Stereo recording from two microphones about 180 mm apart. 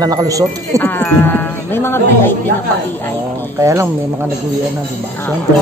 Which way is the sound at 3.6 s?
15° right (ahead or behind).